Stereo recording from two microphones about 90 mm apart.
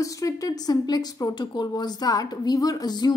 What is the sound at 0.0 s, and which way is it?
Speech, 40° left (ahead or behind).